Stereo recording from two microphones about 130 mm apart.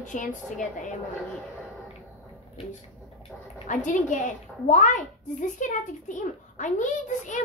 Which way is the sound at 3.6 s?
75° left (ahead or behind).